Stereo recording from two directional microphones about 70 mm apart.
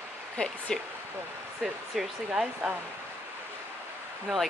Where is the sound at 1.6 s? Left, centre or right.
Centre.